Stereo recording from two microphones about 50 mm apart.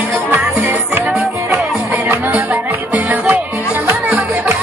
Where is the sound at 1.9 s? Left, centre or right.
Right.